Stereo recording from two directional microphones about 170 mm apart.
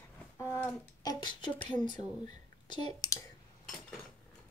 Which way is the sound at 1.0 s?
25° left (ahead or behind).